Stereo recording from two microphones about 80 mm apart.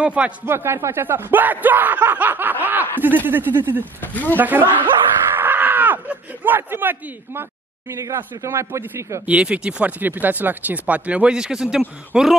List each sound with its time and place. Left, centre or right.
0.0 s speech: centre
0.5 s speech: right
4.0 s speech: left
4.4 s screaming: right
8.4 s speech: right
9.2 s speech: centre